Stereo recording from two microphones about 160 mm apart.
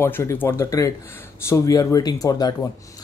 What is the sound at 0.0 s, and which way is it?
Speech, 15° left (ahead or behind).